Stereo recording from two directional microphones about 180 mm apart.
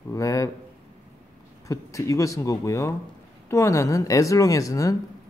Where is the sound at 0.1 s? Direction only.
20° left (ahead or behind).